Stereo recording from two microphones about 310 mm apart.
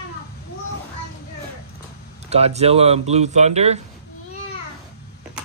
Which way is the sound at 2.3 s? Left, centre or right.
Centre.